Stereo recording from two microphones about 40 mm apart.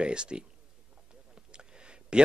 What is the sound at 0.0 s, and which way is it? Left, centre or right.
Speech, right.